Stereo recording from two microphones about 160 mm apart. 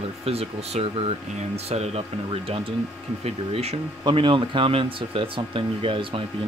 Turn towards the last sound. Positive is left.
turn(degrees=-35)  # may be behind; listen again after turning